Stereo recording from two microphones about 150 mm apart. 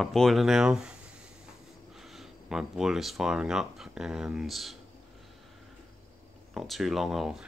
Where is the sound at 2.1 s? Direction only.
Centre (ahead or behind).